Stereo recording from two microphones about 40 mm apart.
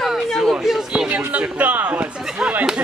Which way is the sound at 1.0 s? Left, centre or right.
Right.